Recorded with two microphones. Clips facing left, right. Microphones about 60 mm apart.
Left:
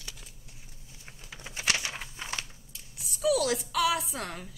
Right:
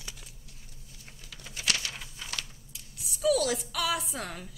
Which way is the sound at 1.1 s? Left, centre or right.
Left.